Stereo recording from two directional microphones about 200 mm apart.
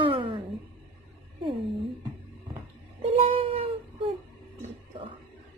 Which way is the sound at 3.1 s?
30° right (ahead or behind).